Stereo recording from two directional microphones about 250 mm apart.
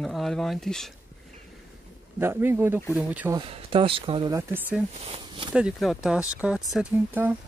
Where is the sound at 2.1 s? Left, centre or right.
Centre.